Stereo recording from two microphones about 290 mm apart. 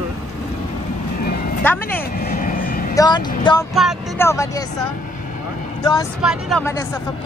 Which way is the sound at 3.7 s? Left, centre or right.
Centre.